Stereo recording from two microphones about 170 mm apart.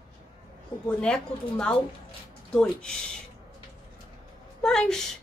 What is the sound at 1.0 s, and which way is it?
A woman's voice, 5° left (ahead or behind).